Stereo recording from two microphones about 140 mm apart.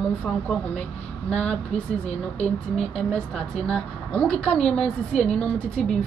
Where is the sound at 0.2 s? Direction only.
10° left (ahead or behind).